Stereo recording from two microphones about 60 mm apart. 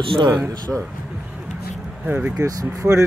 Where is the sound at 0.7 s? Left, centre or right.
Centre.